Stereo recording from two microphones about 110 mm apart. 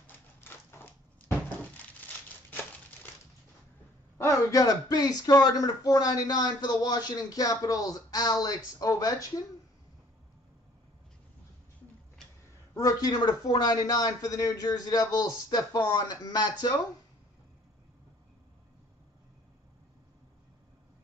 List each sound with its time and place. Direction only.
0.0 s typewriter: 20° left (ahead or behind)
4.2 s speech: 30° left (ahead or behind)
12.7 s speech: 35° left (ahead or behind)